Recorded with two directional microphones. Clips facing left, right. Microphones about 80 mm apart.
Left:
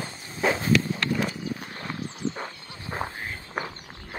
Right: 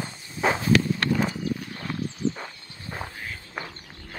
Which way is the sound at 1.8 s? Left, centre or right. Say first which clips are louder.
Right 3 dB; centre.